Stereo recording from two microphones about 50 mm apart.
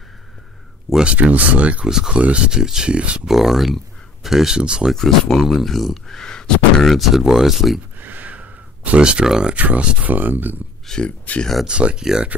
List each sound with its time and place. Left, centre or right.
1.0 s speech: right
1.9 s speech: centre
2.1 s speech: right
3.3 s speech: centre
5.3 s speech: centre
6.0 s speech: centre
6.9 s speech: centre
8.0 s a sound: right
9.2 s speech: centre
9.5 s speech: right
10.9 s speech: left
11.6 s speech: centre